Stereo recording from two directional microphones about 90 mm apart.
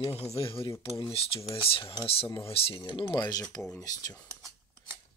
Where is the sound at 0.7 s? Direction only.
35° left (ahead or behind).